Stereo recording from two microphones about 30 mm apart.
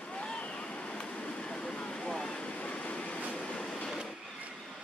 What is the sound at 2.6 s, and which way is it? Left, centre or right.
Train, left.